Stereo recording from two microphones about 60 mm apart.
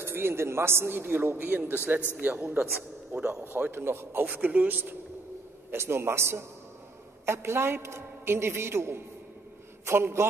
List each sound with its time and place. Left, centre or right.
0.0 s a man's voice: right
3.2 s speech: centre
3.4 s a man's voice: right
4.2 s a man's voice: right
5.7 s a man's voice: right